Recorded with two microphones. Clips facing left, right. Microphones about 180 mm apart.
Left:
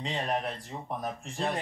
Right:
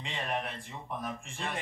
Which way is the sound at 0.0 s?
40° left (ahead or behind).